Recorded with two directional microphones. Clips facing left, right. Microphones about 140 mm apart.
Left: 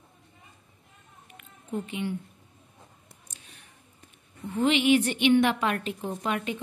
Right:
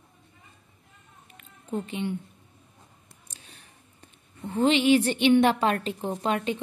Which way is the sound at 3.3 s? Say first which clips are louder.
Right 3 dB; 35° right (ahead or behind).